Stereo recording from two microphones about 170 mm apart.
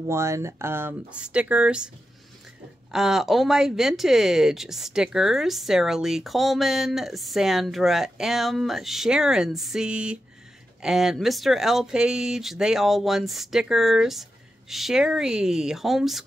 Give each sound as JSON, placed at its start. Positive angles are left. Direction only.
{"t": 0.0, "sound": "speech", "side_deg": -15}
{"t": 2.9, "sound": "speech", "side_deg": 0}